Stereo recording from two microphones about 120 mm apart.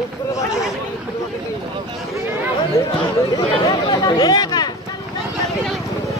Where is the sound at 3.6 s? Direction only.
35° left (ahead or behind).